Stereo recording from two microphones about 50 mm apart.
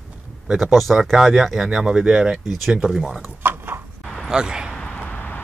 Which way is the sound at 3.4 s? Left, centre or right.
Right.